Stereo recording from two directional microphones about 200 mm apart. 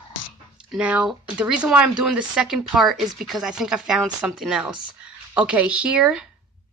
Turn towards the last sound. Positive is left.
turn(degrees=-5)  # may be behind; listen again after turning